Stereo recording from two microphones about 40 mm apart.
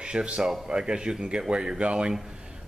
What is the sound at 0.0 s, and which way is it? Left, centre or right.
Speech, right.